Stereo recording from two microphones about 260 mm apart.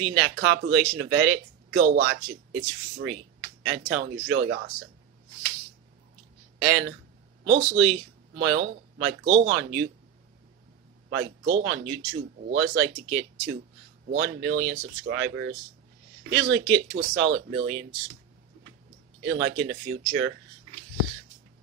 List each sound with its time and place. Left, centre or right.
0.0 s speech: right
6.6 s speech: right
11.4 s speech: right
19.2 s speech: right